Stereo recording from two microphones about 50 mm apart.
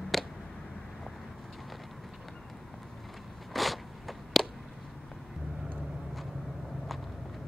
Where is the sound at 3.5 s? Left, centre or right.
Centre.